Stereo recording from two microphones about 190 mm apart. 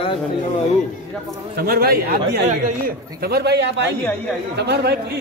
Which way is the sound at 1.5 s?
55° right (ahead or behind).